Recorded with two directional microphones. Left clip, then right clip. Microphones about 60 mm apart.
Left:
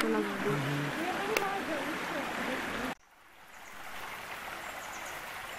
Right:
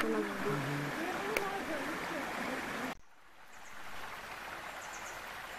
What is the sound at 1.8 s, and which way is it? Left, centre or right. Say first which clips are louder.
Stream: left 3 dB; left.